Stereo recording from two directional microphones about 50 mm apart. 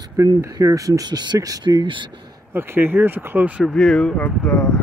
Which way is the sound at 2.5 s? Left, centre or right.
Right.